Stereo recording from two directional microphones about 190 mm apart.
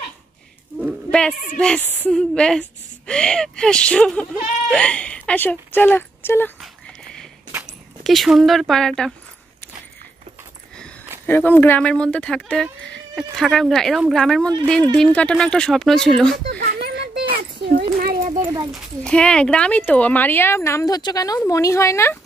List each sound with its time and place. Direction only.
0.7 s a sound: centre (ahead or behind)
1.6 s speech: 5° left (ahead or behind)
7.6 s speech: centre (ahead or behind)
11.2 s speech: 10° left (ahead or behind)
16.4 s a child's voice: 60° right (ahead or behind)
16.8 s a sound: 60° right (ahead or behind)
17.4 s cat: 55° right (ahead or behind)
17.9 s a sound: 45° right (ahead or behind)
18.7 s speech: 5° left (ahead or behind)